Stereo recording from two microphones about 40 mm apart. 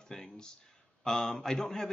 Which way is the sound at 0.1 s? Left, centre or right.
Centre.